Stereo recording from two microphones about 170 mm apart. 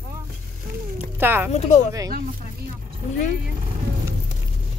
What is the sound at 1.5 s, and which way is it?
Speech, 40° left (ahead or behind).